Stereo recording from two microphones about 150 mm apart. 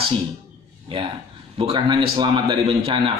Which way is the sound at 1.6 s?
35° right (ahead or behind).